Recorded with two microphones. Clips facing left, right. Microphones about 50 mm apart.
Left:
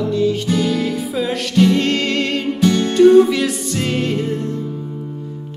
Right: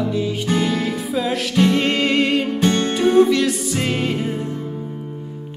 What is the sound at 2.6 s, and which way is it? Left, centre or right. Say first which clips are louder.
Music: left 2 dB; right.